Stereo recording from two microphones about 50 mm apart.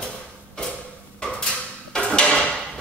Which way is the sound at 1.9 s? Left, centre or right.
Centre.